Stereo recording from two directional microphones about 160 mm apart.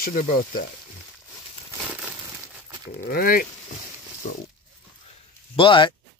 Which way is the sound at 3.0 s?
65° left (ahead or behind).